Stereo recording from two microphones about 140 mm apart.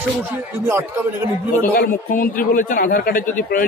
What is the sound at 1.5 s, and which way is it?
A man's voice, 80° left.